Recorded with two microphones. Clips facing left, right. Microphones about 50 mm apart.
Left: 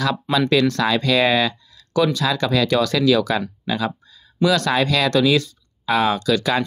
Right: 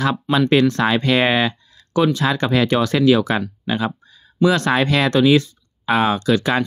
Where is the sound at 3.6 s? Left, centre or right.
Right.